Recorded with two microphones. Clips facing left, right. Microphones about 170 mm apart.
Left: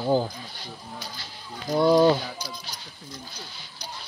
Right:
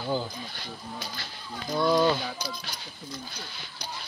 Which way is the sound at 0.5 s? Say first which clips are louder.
Right 1 dB; 60° right (ahead or behind).